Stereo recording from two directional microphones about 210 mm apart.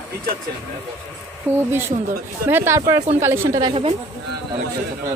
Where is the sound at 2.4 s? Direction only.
10° right (ahead or behind).